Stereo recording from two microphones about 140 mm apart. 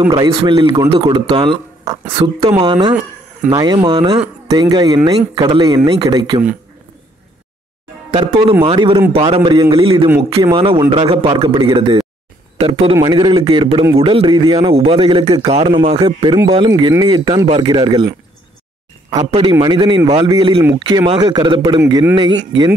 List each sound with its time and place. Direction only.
0.1 s speech: 35° right (ahead or behind)
8.1 s speech: 40° right (ahead or behind)
14.7 s speech: 40° right (ahead or behind)
19.6 s speech: 35° right (ahead or behind)